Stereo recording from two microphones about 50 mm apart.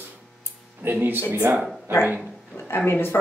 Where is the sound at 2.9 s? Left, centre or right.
Left.